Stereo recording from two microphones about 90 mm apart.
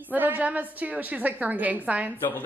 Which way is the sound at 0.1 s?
20° right (ahead or behind).